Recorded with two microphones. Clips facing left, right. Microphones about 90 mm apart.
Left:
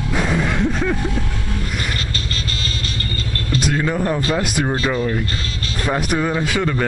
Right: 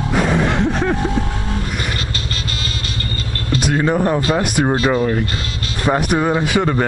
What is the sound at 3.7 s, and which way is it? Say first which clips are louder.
Speech: right 6 dB; 25° right (ahead or behind).